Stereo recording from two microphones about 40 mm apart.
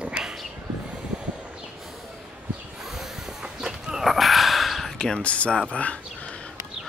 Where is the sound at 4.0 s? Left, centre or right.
Centre.